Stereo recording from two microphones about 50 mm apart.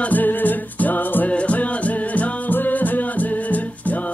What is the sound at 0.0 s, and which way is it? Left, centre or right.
Music, left.